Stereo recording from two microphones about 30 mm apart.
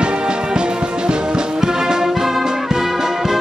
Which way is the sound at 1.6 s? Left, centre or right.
Centre.